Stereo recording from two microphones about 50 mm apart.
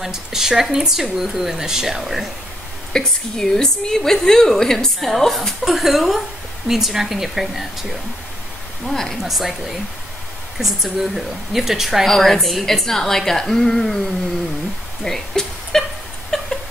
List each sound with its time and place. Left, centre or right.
0.0 s speech: centre
2.9 s a woman's voice: centre
8.8 s a woman's voice: centre
9.2 s a woman's voice: centre
10.6 s a woman's voice: centre
12.1 s a woman's voice: centre
15.0 s speech: centre
16.3 s a sound: centre